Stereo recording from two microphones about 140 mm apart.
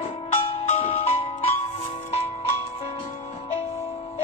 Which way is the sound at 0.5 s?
45° left (ahead or behind).